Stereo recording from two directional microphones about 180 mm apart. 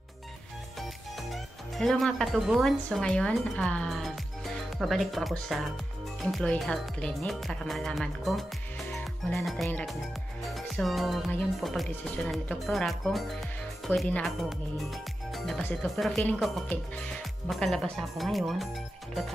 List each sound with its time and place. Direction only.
1.3 s speech: centre (ahead or behind)
8.9 s music: centre (ahead or behind)
9.7 s speech: 10° left (ahead or behind)